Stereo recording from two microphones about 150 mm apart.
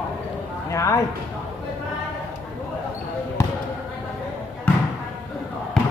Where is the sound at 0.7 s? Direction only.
20° left (ahead or behind).